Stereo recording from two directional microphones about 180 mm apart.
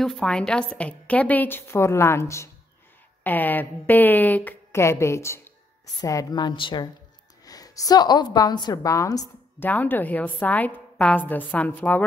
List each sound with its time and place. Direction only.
0.0 s a woman's voice: 5° left (ahead or behind)